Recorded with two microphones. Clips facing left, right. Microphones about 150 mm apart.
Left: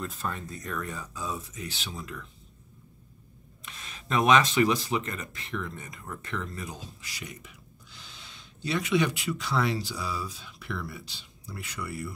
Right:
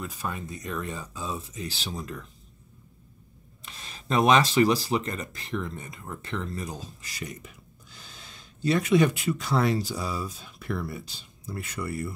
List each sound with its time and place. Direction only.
0.0 s speech: 10° right (ahead or behind); by 2.2 s 40° right (ahead or behind)
3.6 s a sound: 35° right (ahead or behind)
4.3 s speech: 35° right (ahead or behind)